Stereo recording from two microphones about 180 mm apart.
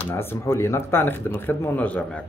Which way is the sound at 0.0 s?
10° left (ahead or behind).